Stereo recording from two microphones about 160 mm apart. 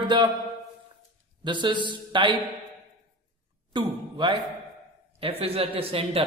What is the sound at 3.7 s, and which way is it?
A man's voice, 30° right (ahead or behind).